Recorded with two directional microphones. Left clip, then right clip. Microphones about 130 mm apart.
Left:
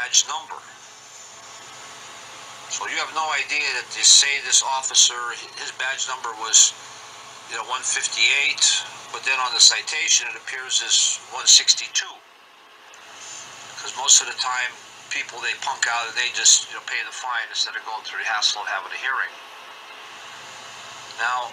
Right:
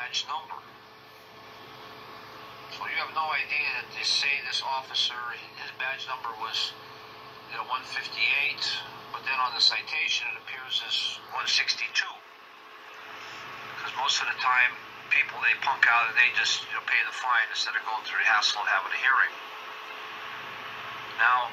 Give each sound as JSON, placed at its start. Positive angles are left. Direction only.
{"t": 0.0, "sound": "a man's voice", "side_deg": 45}
{"t": 2.7, "sound": "a man's voice", "side_deg": 40}
{"t": 13.7, "sound": "a man's voice", "side_deg": 60}